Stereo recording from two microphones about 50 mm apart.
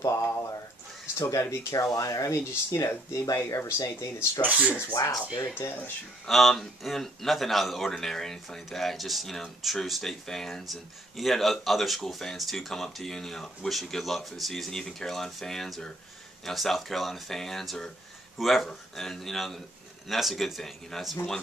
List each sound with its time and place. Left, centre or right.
0.1 s a sound: left
1.1 s speech: left
3.1 s speech: left
4.4 s speech: right
5.6 s speech: left
6.2 s speech: centre